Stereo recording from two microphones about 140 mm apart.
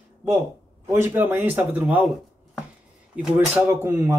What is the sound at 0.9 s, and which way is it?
Speech, 15° right (ahead or behind).